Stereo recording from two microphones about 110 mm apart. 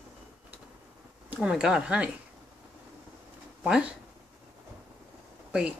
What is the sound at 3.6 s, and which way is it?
Speech, 10° right (ahead or behind).